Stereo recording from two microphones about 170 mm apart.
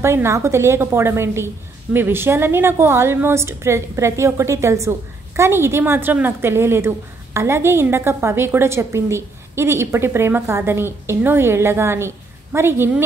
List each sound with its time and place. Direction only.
0.0 s a woman's voice: 15° right (ahead or behind)